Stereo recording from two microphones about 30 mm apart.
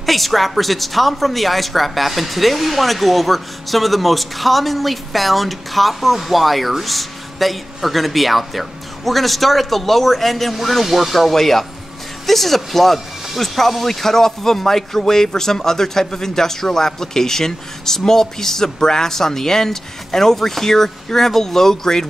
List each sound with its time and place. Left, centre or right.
0.0 s speech: centre